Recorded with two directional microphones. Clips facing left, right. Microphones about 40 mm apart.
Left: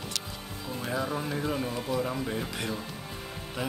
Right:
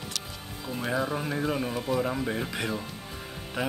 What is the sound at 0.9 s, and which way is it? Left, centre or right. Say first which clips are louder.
Speech: right 1 dB; centre.